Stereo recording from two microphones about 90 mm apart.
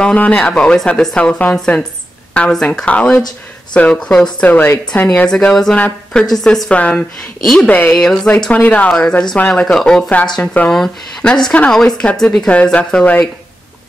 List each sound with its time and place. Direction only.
0.0 s speech: 15° left (ahead or behind)
6.3 s a woman's voice: 5° left (ahead or behind)